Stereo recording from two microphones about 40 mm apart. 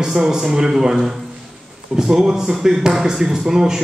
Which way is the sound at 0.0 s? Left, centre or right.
Centre.